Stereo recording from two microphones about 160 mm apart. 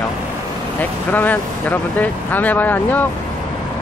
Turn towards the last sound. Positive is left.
turn(degrees=10)  # may be behind; listen again after turning